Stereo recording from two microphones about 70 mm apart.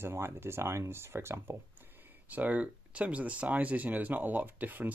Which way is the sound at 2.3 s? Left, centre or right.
Right.